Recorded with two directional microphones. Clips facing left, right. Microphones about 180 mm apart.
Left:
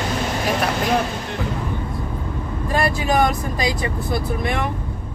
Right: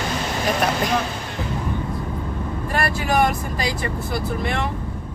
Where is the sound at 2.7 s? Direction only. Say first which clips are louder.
Left 3 dB; 15° left (ahead or behind).